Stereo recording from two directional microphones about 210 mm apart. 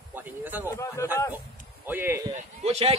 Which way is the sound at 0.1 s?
10° right (ahead or behind).